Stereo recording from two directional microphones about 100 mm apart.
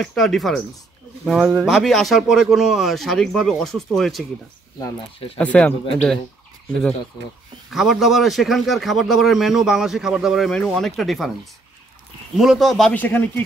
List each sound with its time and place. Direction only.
0.0 s a man's voice: 5° left (ahead or behind)
5.4 s speech: 15° left (ahead or behind)
7.7 s a man's voice: centre (ahead or behind)
12.4 s a man's voice: centre (ahead or behind)
12.9 s speech: 20° left (ahead or behind)